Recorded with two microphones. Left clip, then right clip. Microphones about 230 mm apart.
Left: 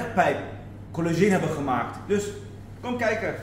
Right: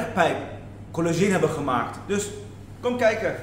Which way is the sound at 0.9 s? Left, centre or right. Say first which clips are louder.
Even; centre.